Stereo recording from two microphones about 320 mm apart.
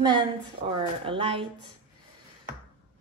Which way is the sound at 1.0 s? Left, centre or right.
Centre.